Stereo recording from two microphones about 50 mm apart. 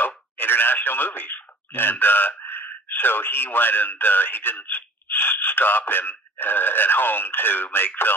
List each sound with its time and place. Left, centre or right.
0.0 s speech: left